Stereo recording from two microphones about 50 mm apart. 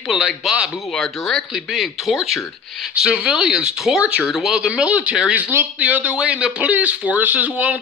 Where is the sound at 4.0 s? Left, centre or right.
Right.